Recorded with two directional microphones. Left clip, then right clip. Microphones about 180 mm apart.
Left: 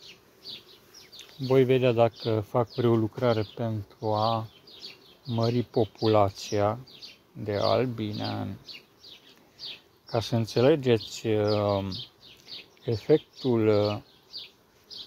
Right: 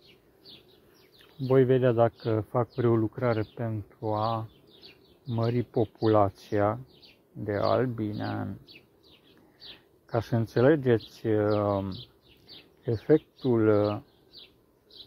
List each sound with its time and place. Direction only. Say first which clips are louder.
1.4 s speech: even; 10° left (ahead or behind)
10.1 s speech: left 1 dB; 5° left (ahead or behind)